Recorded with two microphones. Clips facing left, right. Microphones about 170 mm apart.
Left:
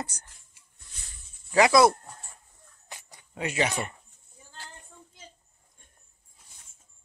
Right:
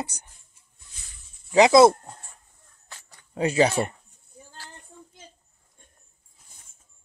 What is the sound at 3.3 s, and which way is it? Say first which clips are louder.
Speech: right 7 dB; 35° right (ahead or behind).